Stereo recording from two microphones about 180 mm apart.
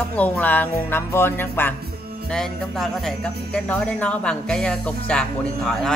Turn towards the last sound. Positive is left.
turn(degrees=0)  # may be behind; listen again after turning